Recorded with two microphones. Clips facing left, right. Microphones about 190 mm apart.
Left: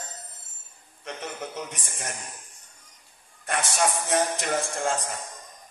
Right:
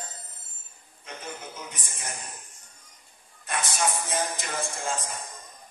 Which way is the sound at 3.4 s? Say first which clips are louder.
Left 3 dB; 70° left (ahead or behind).